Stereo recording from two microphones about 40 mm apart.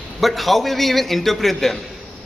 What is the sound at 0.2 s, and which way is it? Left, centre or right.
A man's voice, centre.